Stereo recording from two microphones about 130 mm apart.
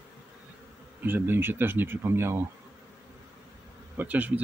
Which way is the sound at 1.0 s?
15° right (ahead or behind).